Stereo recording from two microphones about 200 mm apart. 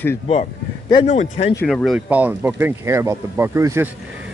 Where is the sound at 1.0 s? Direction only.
35° left (ahead or behind).